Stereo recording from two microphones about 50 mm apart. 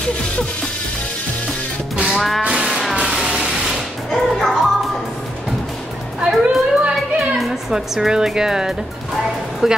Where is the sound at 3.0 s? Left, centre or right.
Centre.